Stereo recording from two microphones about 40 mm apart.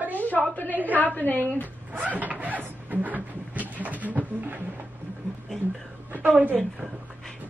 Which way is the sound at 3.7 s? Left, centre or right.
Right.